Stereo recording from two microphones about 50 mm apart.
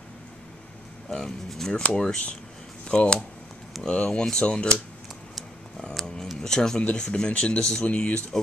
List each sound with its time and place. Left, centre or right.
1.1 s speech: centre
6.4 s speech: centre
6.8 s speech: left